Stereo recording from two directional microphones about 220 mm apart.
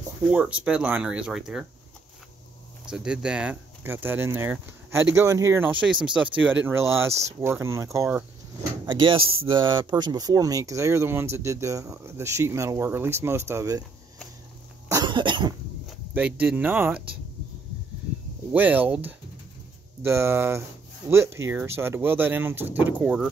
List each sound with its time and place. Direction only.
0.3 s speech: 5° right (ahead or behind)
2.9 s speech: 5° right (ahead or behind)
8.8 s speech: 20° right (ahead or behind)
14.9 s cough: 20° right (ahead or behind)
16.1 s speech: 5° right (ahead or behind)
18.5 s speech: 10° right (ahead or behind)